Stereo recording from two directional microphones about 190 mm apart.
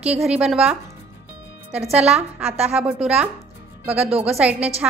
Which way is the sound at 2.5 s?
35° right (ahead or behind).